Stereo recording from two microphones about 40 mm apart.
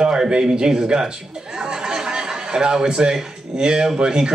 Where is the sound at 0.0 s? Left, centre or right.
Right.